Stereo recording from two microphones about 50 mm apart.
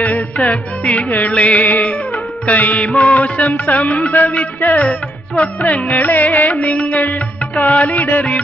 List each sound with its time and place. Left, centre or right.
0.0 s music: left
2.4 s carnatic music: left
7.9 s music: left